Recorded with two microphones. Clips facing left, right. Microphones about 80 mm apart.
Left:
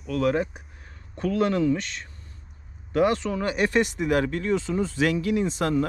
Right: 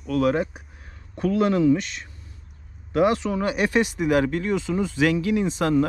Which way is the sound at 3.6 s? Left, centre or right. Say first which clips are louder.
Even; right.